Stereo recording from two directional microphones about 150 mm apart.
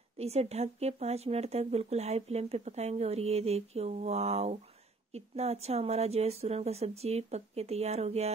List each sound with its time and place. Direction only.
0.2 s speech: 45° right (ahead or behind)